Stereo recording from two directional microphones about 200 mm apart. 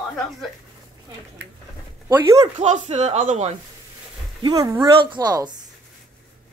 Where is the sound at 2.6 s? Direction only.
35° right (ahead or behind).